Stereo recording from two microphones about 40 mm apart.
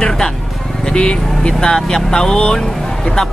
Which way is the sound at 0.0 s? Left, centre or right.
Centre.